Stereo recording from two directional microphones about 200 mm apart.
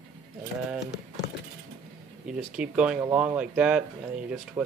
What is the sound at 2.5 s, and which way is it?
Speech, 5° right (ahead or behind).